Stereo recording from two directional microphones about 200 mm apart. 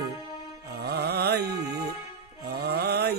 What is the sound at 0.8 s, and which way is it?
Speech, 55° right (ahead or behind).